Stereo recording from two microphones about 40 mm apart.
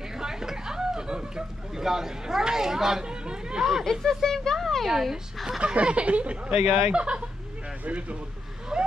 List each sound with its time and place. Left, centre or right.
0.2 s speech: centre
3.6 s speech: centre
5.6 s speech: right
6.5 s speech: right
6.9 s speech: right
8.7 s vehicle: centre